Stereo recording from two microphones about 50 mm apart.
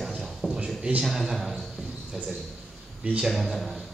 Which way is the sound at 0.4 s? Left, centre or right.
Centre.